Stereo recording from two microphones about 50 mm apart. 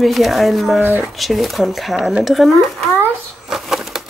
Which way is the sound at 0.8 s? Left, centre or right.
Right.